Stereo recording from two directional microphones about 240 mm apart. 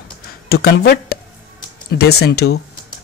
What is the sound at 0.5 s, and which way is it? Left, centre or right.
Speech, left.